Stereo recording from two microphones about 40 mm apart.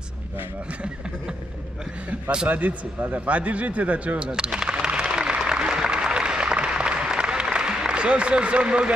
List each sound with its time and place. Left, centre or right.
2.4 s a man's voice: right
4.2 s speech: right
4.6 s a sound: right
5.5 s applause: right